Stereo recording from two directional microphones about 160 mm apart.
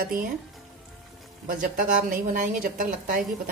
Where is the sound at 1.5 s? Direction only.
55° right (ahead or behind).